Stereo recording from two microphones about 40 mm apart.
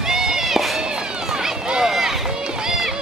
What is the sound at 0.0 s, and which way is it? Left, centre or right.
Run, centre.